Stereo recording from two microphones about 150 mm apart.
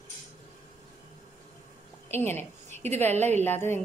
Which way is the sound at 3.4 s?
15° left (ahead or behind).